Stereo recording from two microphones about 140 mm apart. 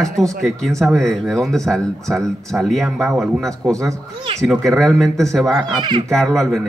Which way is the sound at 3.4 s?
20° right (ahead or behind).